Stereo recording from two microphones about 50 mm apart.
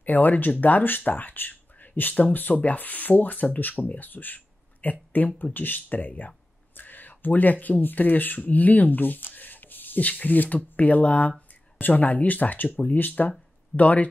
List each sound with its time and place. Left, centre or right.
0.0 s speech: left